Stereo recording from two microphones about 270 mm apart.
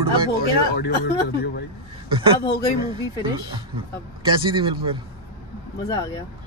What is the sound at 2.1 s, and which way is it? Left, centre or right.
Speech, centre.